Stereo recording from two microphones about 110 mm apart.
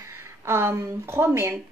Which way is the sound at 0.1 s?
25° right (ahead or behind).